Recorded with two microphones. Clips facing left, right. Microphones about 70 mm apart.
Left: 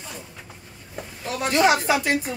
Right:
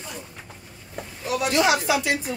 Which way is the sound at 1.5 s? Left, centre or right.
Left.